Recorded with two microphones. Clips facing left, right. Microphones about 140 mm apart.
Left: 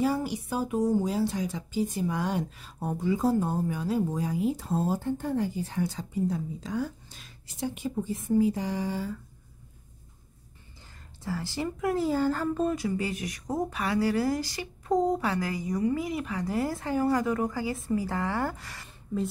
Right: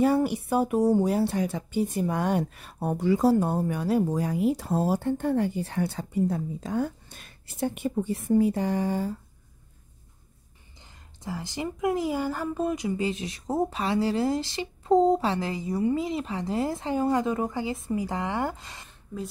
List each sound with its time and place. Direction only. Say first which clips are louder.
0.0 s speech: right 5 dB; 60° right (ahead or behind)
11.2 s speech: left 1 dB; 20° right (ahead or behind)